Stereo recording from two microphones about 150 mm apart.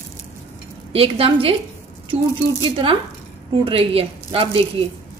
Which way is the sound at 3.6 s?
40° right (ahead or behind).